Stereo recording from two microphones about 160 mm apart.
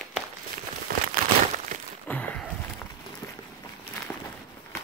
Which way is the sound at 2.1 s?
10° left (ahead or behind).